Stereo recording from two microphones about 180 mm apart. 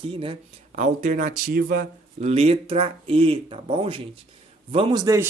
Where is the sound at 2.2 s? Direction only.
35° right (ahead or behind).